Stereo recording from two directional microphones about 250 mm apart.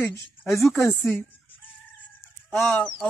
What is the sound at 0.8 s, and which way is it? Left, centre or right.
Speech, centre.